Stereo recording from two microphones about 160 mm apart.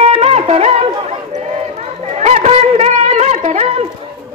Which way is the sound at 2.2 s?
45° right (ahead or behind).